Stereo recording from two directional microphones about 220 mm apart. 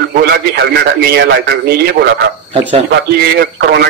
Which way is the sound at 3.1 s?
45° right (ahead or behind).